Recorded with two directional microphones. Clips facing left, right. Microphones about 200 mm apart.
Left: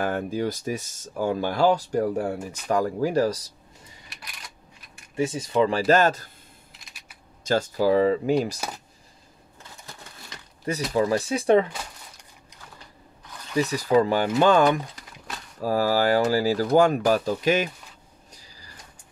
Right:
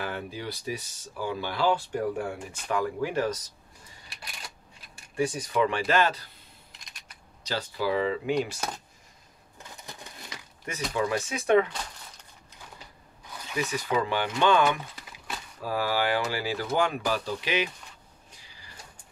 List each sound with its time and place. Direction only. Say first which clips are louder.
0.0 s speech: left 9 dB; 45° left (ahead or behind)
5.1 s speech: left 3 dB; 25° left (ahead or behind); by 6.3 s 45° left (ahead or behind)
6.8 s computer keyboard: left 1 dB; 5° left (ahead or behind)
7.4 s speech: left 8 dB; 45° left (ahead or behind)
10.9 s speech: left 5 dB; 35° left (ahead or behind)
13.6 s speech: left 8 dB; 35° left (ahead or behind)
15.1 s a sound: even; centre (ahead or behind)
15.6 s speech: left 6 dB; 40° left (ahead or behind)
18.3 s a sound: left 5 dB; 40° left (ahead or behind)